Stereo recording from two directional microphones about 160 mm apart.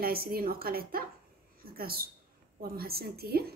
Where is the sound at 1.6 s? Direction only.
70° right (ahead or behind).